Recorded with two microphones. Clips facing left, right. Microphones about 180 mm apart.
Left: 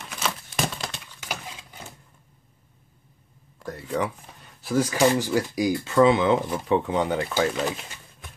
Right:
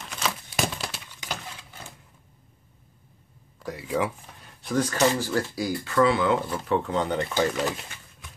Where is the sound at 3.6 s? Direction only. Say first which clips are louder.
Even; 5° right (ahead or behind).